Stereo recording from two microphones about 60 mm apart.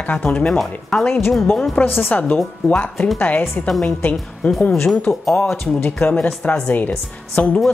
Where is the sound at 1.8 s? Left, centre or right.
Left.